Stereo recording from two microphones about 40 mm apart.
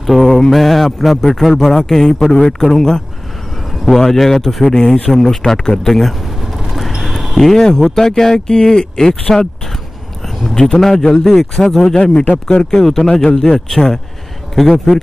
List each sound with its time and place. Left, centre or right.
0.2 s speech: centre
6.2 s speech: centre
11.9 s a man's voice: left
12.7 s speech: centre
14.5 s speech: centre